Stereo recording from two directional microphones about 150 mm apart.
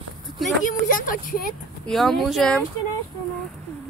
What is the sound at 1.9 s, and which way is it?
Speech, centre (ahead or behind).